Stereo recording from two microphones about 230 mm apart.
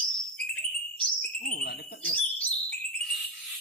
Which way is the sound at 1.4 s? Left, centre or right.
Left.